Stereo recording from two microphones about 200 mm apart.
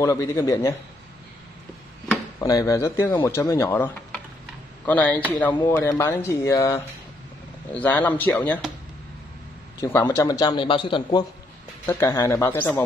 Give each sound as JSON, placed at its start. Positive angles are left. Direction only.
{"t": 0.0, "sound": "speech", "side_deg": 15}
{"t": 2.4, "sound": "speech", "side_deg": 15}
{"t": 9.8, "sound": "a man's voice", "side_deg": 15}
{"t": 11.8, "sound": "speech", "side_deg": 10}